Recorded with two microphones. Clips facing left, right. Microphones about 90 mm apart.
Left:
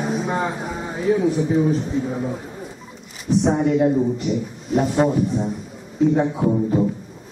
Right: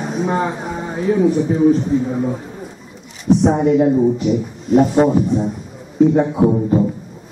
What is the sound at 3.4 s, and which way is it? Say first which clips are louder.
A man's voice: right 1 dB; centre (ahead or behind).